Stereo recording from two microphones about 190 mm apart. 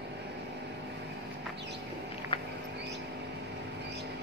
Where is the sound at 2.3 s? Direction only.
30° left (ahead or behind).